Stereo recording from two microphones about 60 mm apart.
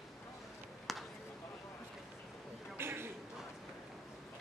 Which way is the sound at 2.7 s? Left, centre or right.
Right.